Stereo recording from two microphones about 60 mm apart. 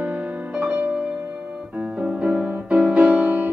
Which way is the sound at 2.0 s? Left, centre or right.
Right.